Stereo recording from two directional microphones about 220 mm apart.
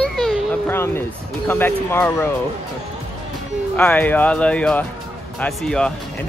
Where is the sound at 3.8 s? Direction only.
10° left (ahead or behind).